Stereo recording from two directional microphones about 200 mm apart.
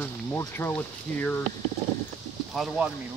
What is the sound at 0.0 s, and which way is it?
Speech, 10° left (ahead or behind).